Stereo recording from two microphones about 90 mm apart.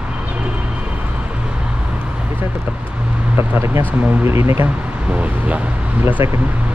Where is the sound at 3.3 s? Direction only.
30° right (ahead or behind).